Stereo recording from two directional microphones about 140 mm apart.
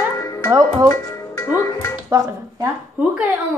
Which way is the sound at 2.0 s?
20° right (ahead or behind).